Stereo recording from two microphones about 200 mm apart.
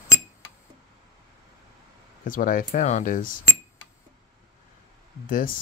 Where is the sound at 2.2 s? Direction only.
45° left (ahead or behind).